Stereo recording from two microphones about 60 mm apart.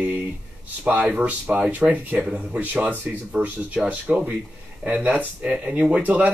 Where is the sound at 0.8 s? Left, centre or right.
Centre.